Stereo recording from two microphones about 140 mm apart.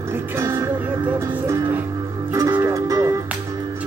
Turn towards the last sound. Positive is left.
turn(degrees=-25)  # may be behind; listen again after turning